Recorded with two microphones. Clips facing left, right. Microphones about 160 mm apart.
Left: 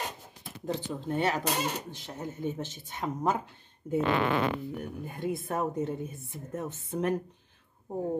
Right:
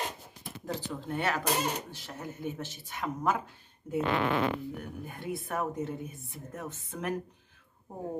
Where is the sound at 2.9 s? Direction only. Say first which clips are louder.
Left 1 dB; 25° left (ahead or behind).